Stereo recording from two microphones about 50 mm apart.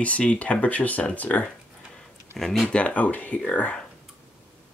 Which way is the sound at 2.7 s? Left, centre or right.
Left.